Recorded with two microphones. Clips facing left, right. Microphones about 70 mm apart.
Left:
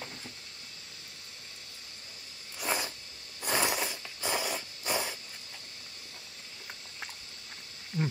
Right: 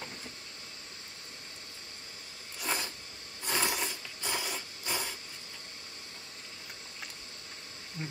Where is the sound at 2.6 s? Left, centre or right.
Centre.